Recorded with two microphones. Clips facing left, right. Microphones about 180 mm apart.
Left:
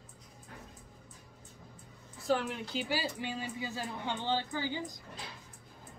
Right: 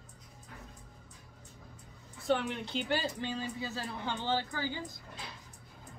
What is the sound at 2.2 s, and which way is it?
A woman's voice, centre (ahead or behind).